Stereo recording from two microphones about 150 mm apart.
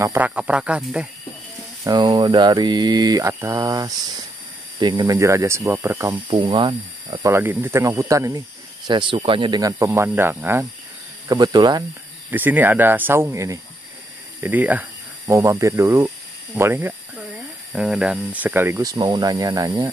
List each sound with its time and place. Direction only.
0.0 s speech: 15° right (ahead or behind)
1.9 s speech: 30° right (ahead or behind)
6.1 s speech: 35° right (ahead or behind)
7.2 s speech: 15° right (ahead or behind)
8.8 s speech: 35° right (ahead or behind); by 10.7 s 15° right (ahead or behind)
11.2 s speech: 30° right (ahead or behind)
12.3 s speech: 10° right (ahead or behind)